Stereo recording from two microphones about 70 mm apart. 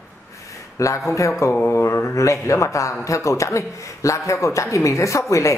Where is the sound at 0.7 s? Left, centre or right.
Left.